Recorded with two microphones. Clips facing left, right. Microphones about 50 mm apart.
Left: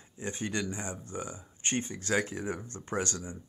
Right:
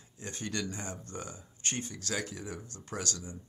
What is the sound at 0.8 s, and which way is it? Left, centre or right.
Speech, centre.